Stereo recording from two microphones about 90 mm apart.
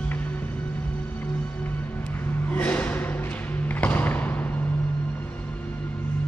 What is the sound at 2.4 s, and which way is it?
Music, 20° left (ahead or behind).